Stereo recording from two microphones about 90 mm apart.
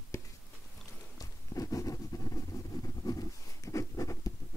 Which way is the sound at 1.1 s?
40° left (ahead or behind).